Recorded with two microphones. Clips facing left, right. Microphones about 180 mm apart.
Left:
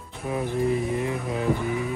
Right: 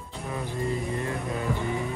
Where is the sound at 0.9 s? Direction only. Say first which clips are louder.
Left 3 dB; 15° left (ahead or behind).